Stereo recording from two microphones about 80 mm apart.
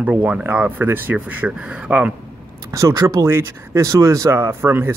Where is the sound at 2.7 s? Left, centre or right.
Right.